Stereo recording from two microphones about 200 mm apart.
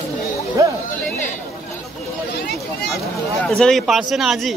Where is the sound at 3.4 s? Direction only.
Centre (ahead or behind).